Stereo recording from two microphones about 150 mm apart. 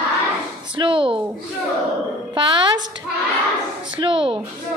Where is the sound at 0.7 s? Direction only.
35° right (ahead or behind).